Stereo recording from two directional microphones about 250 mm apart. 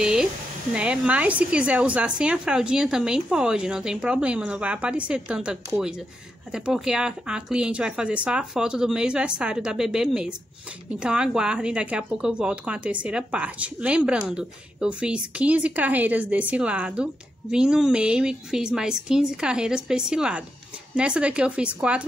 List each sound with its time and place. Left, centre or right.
0.0 s a woman's voice: centre